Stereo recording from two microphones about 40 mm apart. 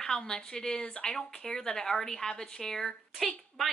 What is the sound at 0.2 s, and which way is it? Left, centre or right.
Speech, centre.